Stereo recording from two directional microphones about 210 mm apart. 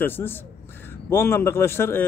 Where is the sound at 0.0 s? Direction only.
10° left (ahead or behind).